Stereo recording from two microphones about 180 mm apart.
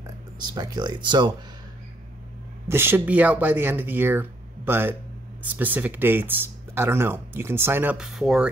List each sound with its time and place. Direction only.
0.0 s speech: 20° right (ahead or behind)
2.7 s speech: 10° right (ahead or behind)